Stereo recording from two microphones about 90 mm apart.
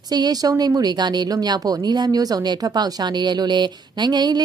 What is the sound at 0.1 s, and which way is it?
A woman's voice, 45° right (ahead or behind).